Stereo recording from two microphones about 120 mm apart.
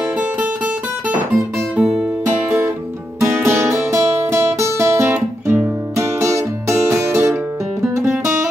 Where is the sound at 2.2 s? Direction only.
20° right (ahead or behind).